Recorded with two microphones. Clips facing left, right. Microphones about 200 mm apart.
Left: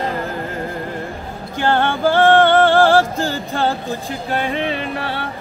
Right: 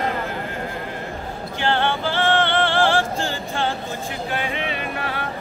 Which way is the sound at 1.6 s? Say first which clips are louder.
Left 5 dB; 45° left (ahead or behind).